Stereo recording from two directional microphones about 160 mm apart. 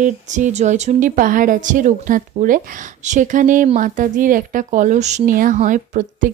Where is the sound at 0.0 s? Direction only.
50° right (ahead or behind).